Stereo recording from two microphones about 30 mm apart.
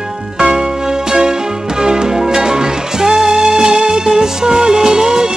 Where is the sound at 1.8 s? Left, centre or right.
Right.